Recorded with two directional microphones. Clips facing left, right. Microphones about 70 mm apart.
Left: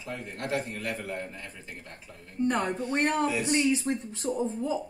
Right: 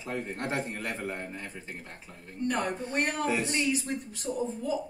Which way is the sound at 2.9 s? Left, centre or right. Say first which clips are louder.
Left 4 dB; left.